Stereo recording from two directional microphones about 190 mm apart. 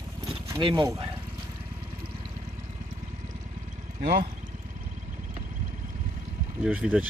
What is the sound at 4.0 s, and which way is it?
Speech, 50° right (ahead or behind).